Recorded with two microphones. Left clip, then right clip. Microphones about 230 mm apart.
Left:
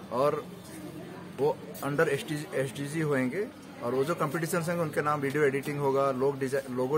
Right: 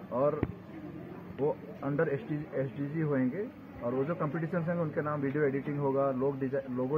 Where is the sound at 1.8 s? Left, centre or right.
Left.